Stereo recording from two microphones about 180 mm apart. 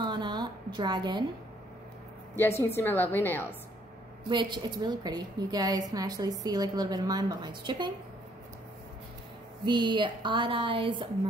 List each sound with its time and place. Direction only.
0.0 s a sound: 25° right (ahead or behind)
2.3 s a woman's voice: 15° left (ahead or behind)
4.3 s a woman's voice: 25° right (ahead or behind)
9.7 s a woman's voice: 25° right (ahead or behind)